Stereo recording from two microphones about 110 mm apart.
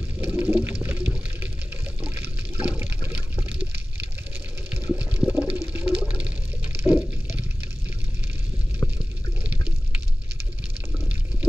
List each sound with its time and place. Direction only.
0.2 s water: 15° right (ahead or behind)
9.4 s water: 15° right (ahead or behind)